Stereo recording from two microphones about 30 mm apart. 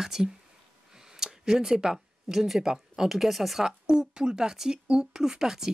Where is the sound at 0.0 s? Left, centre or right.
Centre.